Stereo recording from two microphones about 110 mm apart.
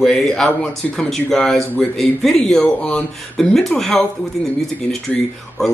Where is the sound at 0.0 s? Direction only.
5° left (ahead or behind).